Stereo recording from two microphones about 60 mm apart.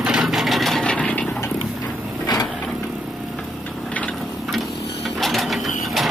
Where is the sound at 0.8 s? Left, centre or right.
Centre.